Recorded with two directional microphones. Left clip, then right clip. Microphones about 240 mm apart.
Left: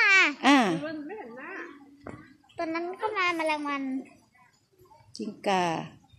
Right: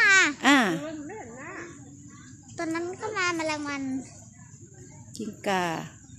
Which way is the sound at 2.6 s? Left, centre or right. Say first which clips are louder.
Left 1 dB; right.